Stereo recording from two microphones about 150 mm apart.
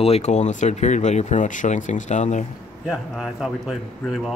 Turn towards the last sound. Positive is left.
turn(degrees=0)  # may be behind; listen again after turning